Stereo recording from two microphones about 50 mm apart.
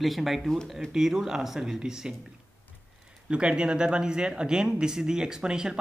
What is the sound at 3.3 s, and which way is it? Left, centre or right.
Speech, centre.